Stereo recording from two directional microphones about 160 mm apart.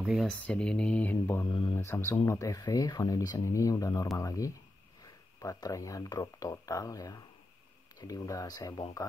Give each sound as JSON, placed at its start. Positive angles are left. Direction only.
{"t": 0.0, "sound": "speech", "side_deg": 0}
{"t": 1.5, "sound": "speech", "side_deg": 30}
{"t": 1.8, "sound": "speech", "side_deg": 15}